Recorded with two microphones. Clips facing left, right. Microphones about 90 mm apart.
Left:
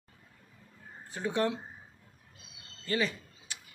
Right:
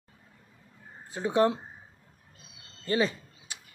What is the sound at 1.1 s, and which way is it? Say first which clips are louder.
Speech: right 6 dB; 25° right (ahead or behind).